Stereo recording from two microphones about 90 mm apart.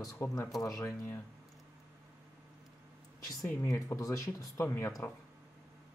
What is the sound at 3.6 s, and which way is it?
Speech, 35° left (ahead or behind).